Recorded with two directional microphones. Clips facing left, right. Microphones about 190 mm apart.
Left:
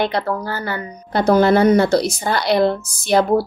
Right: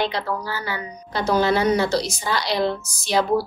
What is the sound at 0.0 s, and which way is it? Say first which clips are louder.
A woman's voice: left 4 dB; 50° left (ahead or behind).